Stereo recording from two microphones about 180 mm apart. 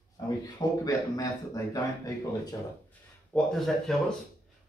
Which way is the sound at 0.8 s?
20° left (ahead or behind).